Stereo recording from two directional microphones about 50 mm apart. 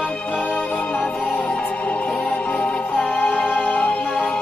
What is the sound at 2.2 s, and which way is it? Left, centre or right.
Music, centre.